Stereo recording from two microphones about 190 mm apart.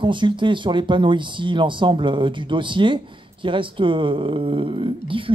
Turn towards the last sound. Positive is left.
turn(degrees=-25)  # may be behind; listen again after turning